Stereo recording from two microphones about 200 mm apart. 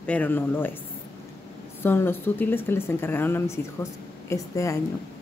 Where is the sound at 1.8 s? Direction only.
10° left (ahead or behind).